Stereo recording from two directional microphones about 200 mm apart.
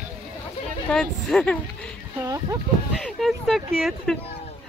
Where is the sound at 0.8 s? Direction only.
5° left (ahead or behind).